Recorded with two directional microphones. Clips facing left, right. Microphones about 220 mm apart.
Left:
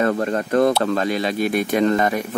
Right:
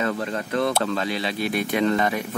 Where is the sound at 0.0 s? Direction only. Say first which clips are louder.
Left 6 dB; 50° left (ahead or behind).